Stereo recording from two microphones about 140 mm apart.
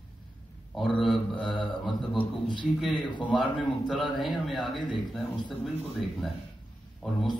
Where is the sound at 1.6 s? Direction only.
35° left (ahead or behind).